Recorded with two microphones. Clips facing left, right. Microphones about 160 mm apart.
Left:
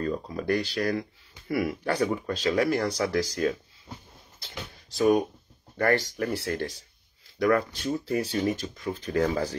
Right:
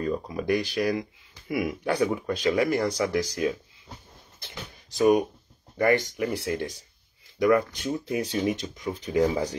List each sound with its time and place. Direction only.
0.0 s speech: 10° right (ahead or behind)
4.9 s speech: 15° right (ahead or behind)